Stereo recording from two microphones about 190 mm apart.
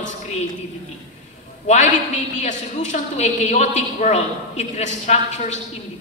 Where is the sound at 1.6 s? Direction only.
40° left (ahead or behind).